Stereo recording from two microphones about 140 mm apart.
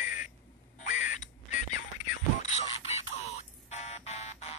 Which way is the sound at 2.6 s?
45° left (ahead or behind).